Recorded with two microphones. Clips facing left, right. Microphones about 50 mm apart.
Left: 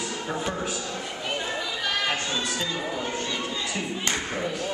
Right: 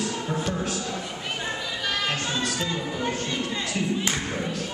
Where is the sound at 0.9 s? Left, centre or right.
Centre.